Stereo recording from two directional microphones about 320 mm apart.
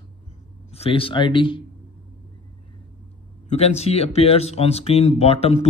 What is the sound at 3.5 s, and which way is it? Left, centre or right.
Speech, centre.